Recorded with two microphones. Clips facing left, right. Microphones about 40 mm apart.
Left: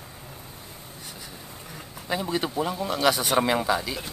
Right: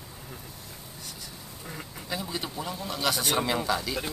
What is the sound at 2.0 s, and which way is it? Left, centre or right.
A man's voice, left.